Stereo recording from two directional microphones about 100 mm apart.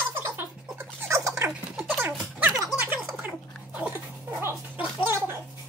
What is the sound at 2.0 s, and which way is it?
Music, 15° right (ahead or behind).